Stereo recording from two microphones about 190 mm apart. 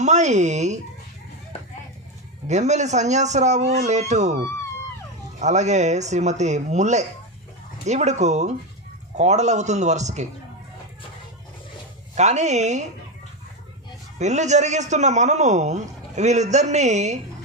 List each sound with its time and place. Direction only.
0.0 s a man's voice: 40° right (ahead or behind)
2.4 s a man's voice: 35° right (ahead or behind)
5.4 s a man's voice: 35° right (ahead or behind)
12.2 s a man's voice: 35° right (ahead or behind)
14.1 s a man's voice: 40° right (ahead or behind)